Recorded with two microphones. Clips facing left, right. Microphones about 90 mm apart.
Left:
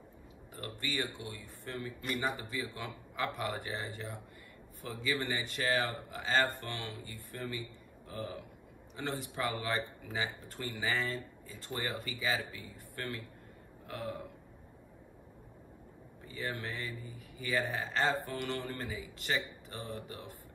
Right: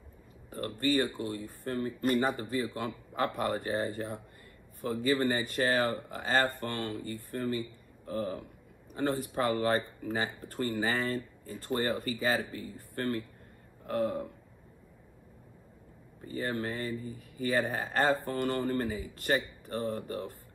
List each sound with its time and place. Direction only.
0.5 s speech: 45° right (ahead or behind)
16.3 s speech: 45° right (ahead or behind)